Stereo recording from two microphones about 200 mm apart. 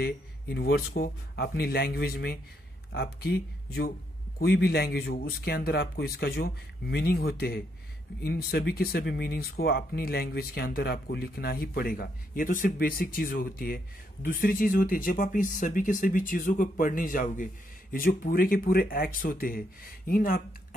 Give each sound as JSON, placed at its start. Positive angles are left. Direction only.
{"t": 0.0, "sound": "speech", "side_deg": 55}